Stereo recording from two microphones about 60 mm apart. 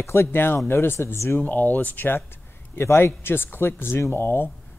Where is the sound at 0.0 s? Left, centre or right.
Left.